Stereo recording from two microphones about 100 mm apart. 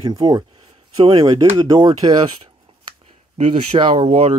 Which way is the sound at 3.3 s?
75° right (ahead or behind).